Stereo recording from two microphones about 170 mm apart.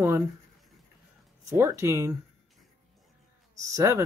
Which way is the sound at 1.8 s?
15° right (ahead or behind).